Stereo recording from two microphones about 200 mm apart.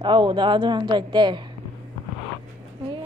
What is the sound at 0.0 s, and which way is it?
Speech, 25° right (ahead or behind).